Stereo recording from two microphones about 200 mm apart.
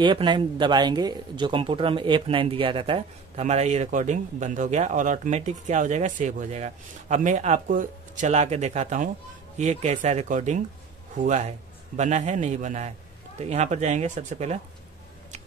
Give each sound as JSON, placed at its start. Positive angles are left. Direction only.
{"t": 0.0, "sound": "speech", "side_deg": -25}